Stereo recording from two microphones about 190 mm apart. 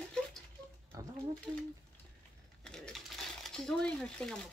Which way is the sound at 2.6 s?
Centre (ahead or behind).